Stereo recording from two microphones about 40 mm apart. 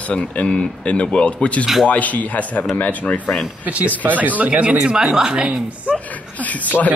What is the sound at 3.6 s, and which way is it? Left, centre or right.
A man's voice, right.